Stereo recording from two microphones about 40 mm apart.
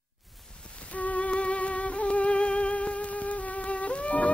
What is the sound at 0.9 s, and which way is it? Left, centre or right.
Music, left.